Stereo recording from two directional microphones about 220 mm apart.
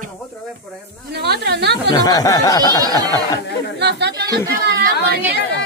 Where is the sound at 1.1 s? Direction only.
45° right (ahead or behind).